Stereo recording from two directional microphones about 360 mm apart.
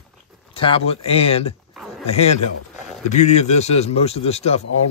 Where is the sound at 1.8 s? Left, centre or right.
Centre.